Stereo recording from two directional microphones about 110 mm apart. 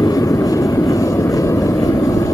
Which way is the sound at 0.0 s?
30° left (ahead or behind).